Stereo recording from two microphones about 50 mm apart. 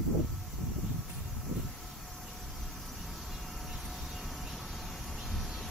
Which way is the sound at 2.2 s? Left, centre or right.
Centre.